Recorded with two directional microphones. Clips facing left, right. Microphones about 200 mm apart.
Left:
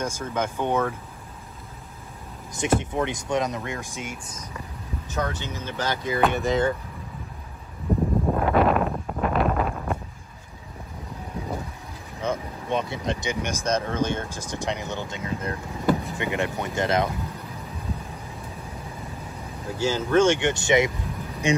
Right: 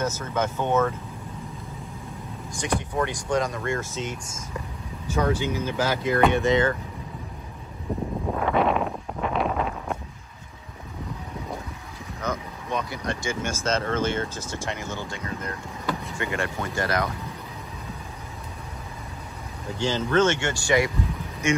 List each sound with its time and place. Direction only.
0.0 s speech: 10° left (ahead or behind)
2.5 s speech: 20° left (ahead or behind)
5.0 s speech: 10° right (ahead or behind)
8.5 s a sound: centre (ahead or behind)
12.2 s speech: 30° left (ahead or behind)
19.8 s speech: 10° left (ahead or behind)
21.4 s speech: 35° left (ahead or behind)